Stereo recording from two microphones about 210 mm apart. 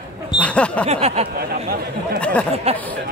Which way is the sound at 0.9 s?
30° right (ahead or behind).